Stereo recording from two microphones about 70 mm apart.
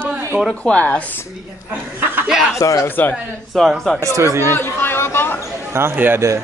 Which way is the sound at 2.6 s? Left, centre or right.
Left.